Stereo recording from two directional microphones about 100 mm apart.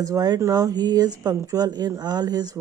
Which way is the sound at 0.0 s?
40° right (ahead or behind).